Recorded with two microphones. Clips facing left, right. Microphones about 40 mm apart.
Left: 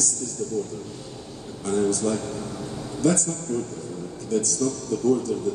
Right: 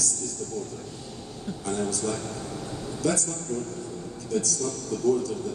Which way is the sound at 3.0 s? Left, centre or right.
Centre.